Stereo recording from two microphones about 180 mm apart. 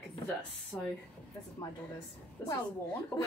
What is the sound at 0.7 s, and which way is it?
Speech, 10° left (ahead or behind).